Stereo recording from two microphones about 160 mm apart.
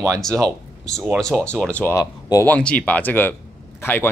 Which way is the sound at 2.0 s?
20° left (ahead or behind).